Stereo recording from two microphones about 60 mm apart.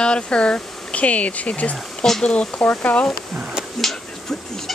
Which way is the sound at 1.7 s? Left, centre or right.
Centre.